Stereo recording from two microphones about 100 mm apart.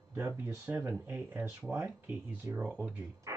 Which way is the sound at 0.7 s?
15° right (ahead or behind).